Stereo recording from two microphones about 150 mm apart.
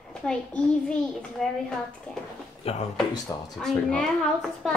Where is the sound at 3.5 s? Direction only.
5° left (ahead or behind).